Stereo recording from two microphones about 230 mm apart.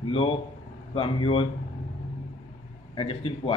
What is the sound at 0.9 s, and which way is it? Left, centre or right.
Speech, left.